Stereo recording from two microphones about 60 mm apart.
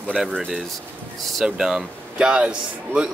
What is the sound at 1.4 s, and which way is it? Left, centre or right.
Speech, centre.